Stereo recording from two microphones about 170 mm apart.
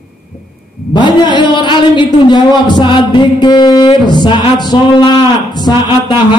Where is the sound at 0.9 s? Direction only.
25° left (ahead or behind).